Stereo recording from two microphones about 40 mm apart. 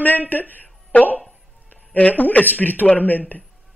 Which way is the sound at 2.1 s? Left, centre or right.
Left.